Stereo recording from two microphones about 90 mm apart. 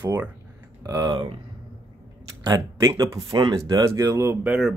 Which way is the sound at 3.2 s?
90° right.